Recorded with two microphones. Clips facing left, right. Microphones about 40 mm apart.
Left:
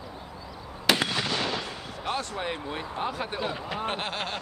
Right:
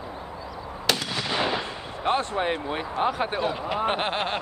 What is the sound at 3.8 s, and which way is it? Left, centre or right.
Speech, right.